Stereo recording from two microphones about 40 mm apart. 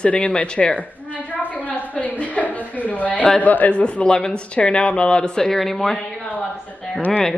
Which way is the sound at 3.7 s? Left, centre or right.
Left.